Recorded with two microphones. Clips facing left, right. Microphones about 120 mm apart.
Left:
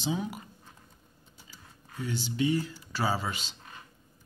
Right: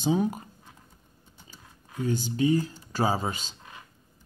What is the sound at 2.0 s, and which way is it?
Speech, 45° right (ahead or behind).